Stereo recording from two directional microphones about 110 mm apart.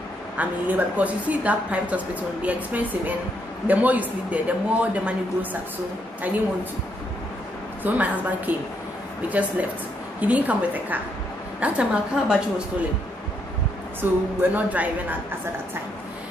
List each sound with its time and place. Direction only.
0.4 s speech: 15° right (ahead or behind)
3.6 s speech: 15° right (ahead or behind)
7.8 s speech: 15° right (ahead or behind)
14.0 s a sound: 20° right (ahead or behind)
14.5 s speech: 15° right (ahead or behind)